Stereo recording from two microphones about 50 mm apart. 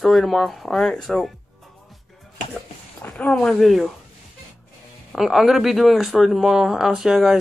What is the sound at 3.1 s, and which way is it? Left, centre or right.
Speech, left.